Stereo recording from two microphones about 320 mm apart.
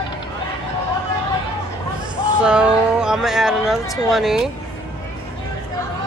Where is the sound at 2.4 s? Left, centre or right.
Centre.